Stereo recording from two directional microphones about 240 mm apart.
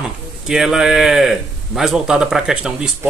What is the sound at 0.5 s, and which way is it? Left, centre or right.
A man's voice, centre.